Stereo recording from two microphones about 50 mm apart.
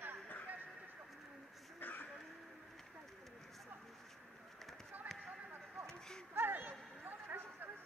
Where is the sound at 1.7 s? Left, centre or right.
Left.